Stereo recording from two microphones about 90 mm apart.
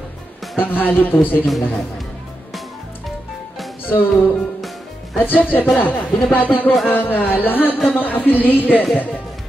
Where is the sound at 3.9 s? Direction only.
20° left (ahead or behind).